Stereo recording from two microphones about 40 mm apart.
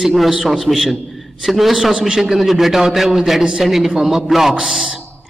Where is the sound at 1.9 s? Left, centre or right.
Right.